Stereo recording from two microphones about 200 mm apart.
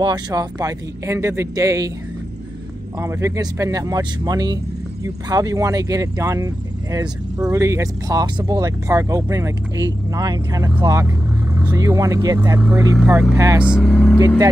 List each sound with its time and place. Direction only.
0.0 s speech: 20° right (ahead or behind)
3.0 s speech: 15° right (ahead or behind)
13.7 s speech: centre (ahead or behind)